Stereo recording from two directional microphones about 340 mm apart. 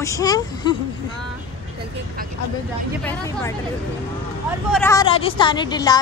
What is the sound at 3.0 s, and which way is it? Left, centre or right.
Speech, centre.